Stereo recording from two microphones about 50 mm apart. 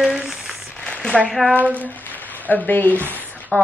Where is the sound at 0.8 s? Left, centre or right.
Centre.